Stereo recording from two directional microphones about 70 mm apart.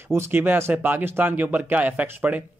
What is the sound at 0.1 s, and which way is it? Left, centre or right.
Speech, right.